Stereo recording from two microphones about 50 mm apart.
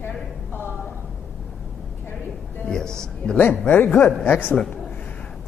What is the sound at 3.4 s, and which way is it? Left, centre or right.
A man's voice, left.